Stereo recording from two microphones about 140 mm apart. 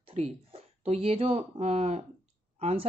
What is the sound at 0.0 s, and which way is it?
Speech, 45° right (ahead or behind).